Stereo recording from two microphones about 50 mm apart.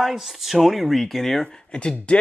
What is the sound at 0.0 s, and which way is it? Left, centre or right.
Speech, centre.